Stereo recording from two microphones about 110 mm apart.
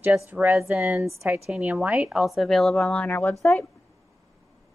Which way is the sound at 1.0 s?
25° right (ahead or behind).